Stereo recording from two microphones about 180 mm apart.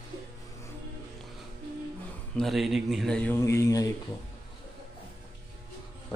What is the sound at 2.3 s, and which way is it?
Speech, centre (ahead or behind).